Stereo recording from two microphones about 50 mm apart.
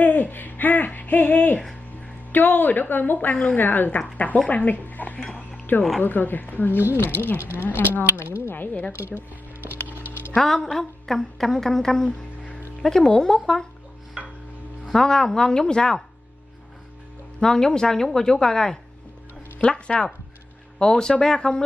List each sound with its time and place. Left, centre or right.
0.0 s a sound: left
2.3 s a woman's voice: left
8.5 s a woman's voice: left
8.9 s a sound: right
10.3 s a woman's voice: centre
14.9 s a woman's voice: centre
17.4 s a woman's voice: centre